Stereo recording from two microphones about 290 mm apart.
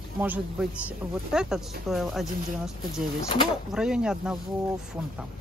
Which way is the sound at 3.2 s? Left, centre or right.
Centre.